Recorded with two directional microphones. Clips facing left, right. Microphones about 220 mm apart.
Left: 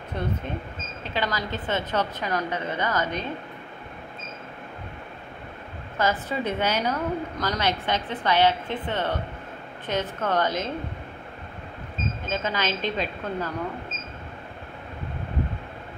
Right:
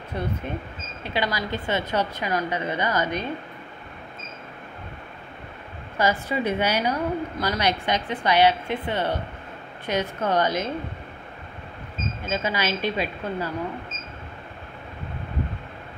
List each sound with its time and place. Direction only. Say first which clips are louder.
0.1 s a woman's voice: right 1 dB; 10° right (ahead or behind)
5.9 s a woman's voice: right 2 dB; 10° right (ahead or behind)
12.3 s a woman's voice: right 2 dB; 10° right (ahead or behind)